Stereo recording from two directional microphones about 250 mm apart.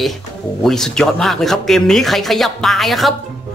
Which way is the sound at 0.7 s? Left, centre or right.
Centre.